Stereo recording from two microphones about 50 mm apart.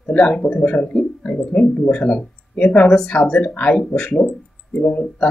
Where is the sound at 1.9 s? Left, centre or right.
Left.